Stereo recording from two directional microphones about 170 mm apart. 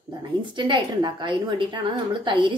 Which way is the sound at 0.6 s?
30° right (ahead or behind).